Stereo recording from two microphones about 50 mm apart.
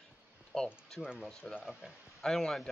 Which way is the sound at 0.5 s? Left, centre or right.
Centre.